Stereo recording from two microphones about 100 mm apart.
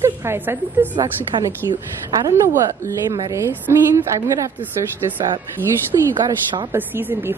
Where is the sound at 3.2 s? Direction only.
30° right (ahead or behind).